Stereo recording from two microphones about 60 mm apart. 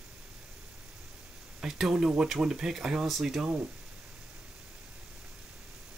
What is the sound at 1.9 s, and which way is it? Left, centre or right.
Speech, centre.